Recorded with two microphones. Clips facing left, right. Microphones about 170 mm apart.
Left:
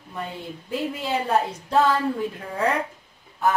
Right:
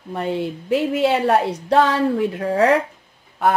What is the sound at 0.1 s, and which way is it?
A woman's voice, 70° right (ahead or behind).